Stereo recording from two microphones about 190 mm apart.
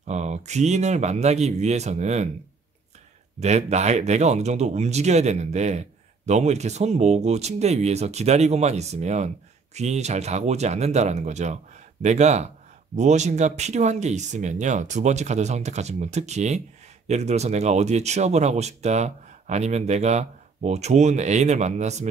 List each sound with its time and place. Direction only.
0.0 s speech: 35° right (ahead or behind)
3.3 s speech: 35° right (ahead or behind)